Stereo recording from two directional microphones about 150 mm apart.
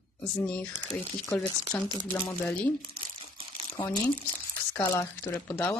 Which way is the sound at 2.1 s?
15° left (ahead or behind).